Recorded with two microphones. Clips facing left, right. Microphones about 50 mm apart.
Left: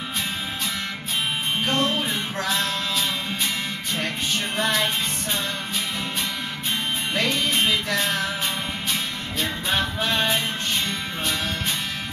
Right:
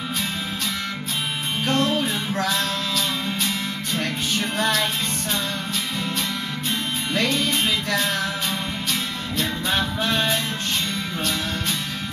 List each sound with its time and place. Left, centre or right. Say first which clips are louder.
1.6 s music: right 3 dB; left
2.3 s music: right 3 dB; centre
4.6 s music: right 1 dB; centre
7.2 s music: right 1 dB; centre
9.4 s music: right 1 dB; centre